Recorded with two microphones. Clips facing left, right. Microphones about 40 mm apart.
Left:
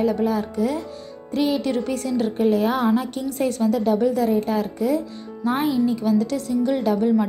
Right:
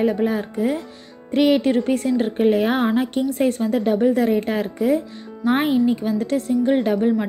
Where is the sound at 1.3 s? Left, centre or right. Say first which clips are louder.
Right 5 dB; right.